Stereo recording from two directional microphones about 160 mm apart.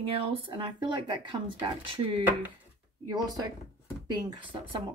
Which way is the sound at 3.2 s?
25° right (ahead or behind).